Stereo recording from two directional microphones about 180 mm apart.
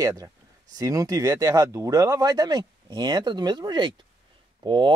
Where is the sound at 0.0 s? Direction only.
20° right (ahead or behind).